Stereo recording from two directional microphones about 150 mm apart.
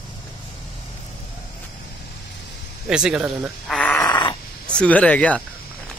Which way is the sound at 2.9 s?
5° right (ahead or behind).